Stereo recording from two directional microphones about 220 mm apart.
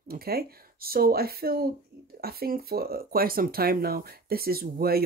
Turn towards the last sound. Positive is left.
turn(degrees=-45)  # may be behind; listen again after turning